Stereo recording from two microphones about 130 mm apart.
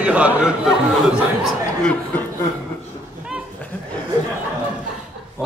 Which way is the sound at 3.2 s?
10° right (ahead or behind).